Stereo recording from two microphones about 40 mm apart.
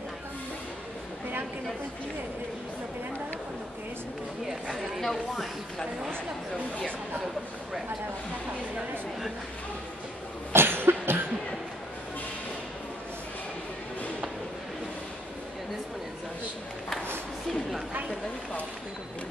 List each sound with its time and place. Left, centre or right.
4.6 s speech: centre
5.3 s speech: centre
10.5 s cough: right
17.5 s a sound: centre